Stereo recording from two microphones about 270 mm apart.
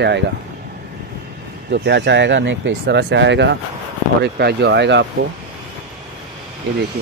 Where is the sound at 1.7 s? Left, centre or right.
Right.